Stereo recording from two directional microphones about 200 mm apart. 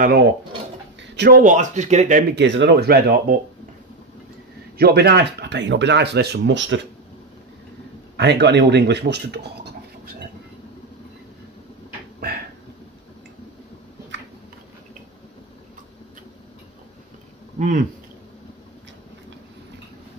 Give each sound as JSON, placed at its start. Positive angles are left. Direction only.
{"t": 1.1, "sound": "speech", "side_deg": -55}
{"t": 1.4, "sound": "speech", "side_deg": -40}
{"t": 2.3, "sound": "speech", "side_deg": -65}
{"t": 4.7, "sound": "speech", "side_deg": -55}
{"t": 8.2, "sound": "speech", "side_deg": -60}
{"t": 17.6, "sound": "speech", "side_deg": -40}